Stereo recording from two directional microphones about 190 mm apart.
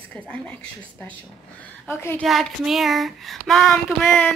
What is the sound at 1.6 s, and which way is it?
Speech, 10° left (ahead or behind).